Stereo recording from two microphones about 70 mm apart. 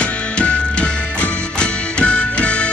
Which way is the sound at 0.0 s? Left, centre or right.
Centre.